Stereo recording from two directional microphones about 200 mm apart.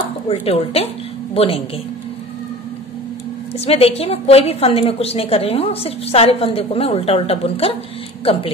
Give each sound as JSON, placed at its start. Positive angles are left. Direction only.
{"t": 0.3, "sound": "a woman's voice", "side_deg": 30}
{"t": 3.5, "sound": "a woman's voice", "side_deg": 30}